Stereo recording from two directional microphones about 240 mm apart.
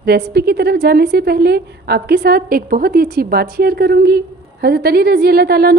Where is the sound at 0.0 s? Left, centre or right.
Right.